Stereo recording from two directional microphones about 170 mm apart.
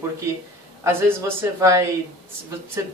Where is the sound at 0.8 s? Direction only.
15° right (ahead or behind).